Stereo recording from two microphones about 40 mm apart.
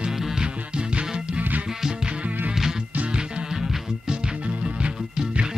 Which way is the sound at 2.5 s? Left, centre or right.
Centre.